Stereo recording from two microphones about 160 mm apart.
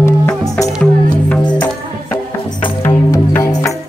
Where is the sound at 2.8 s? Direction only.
20° left (ahead or behind).